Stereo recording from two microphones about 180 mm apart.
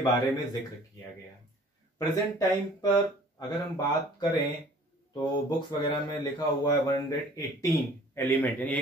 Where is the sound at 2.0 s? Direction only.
20° left (ahead or behind).